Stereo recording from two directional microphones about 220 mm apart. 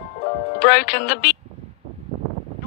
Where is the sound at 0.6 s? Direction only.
45° left (ahead or behind).